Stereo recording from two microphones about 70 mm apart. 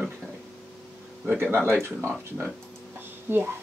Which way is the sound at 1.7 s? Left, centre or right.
Right.